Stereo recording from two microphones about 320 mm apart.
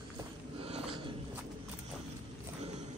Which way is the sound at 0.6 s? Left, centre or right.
Centre.